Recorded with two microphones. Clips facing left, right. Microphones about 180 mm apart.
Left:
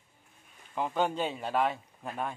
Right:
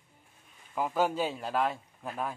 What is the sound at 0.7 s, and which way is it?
Speech, 5° right (ahead or behind).